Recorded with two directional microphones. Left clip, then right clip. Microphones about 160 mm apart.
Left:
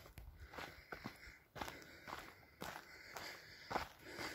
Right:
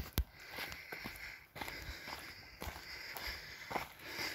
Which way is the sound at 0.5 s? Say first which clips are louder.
Right 6 dB; 15° left (ahead or behind).